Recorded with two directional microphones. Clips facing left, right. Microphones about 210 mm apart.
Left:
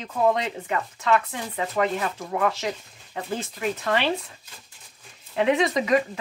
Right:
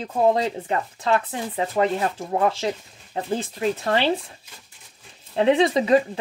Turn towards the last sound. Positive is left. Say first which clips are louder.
# right 4 dB
turn(degrees=-30)  # may be behind; listen again after turning